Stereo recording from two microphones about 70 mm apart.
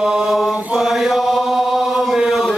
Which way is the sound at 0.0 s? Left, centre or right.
Centre.